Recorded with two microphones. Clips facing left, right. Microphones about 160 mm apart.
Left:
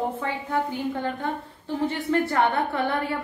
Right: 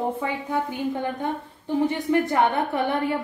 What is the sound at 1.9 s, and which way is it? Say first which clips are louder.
A woman's voice: right 2 dB; 15° right (ahead or behind).